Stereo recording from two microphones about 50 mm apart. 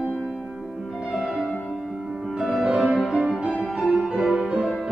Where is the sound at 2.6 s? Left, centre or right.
Centre.